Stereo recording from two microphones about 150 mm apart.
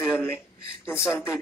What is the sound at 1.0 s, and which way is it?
Speech, centre (ahead or behind).